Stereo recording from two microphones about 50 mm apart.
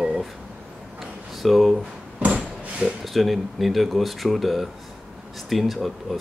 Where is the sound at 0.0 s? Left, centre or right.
Centre.